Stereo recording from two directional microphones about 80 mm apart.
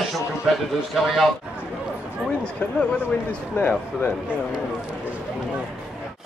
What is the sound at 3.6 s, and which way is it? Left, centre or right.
Speech, left.